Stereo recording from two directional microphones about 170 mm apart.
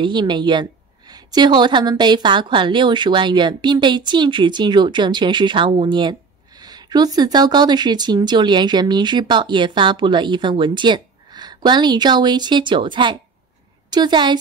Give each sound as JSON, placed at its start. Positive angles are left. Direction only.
{"t": 0.0, "sound": "a woman's voice", "side_deg": -25}